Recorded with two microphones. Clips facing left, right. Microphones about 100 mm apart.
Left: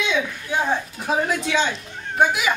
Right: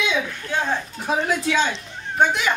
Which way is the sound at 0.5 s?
15° left (ahead or behind).